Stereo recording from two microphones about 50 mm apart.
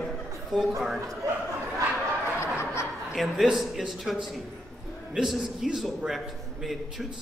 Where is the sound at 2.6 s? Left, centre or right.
Left.